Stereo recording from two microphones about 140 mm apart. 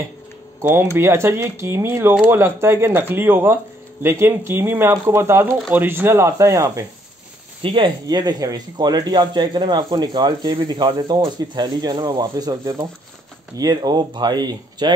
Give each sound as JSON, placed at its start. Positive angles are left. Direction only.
{"t": 0.6, "sound": "speech", "side_deg": -15}
{"t": 7.6, "sound": "speech", "side_deg": -40}